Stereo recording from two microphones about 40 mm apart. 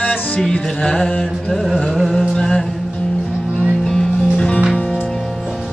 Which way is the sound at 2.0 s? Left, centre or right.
Centre.